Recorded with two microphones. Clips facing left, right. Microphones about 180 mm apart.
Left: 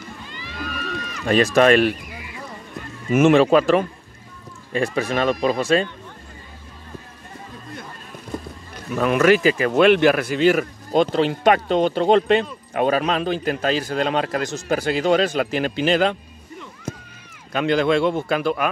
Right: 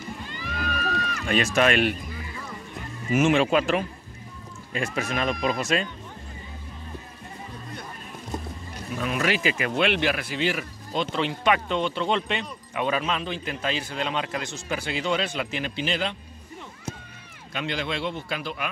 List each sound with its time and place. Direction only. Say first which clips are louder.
1.2 s speech: left 7 dB; 35° left (ahead or behind)
3.1 s speech: left 6 dB; 50° left (ahead or behind)
3.3 s speech: left 7 dB; 40° left (ahead or behind)
8.9 s speech: left 10 dB; 60° left (ahead or behind)
17.5 s speech: left 11 dB; 45° left (ahead or behind)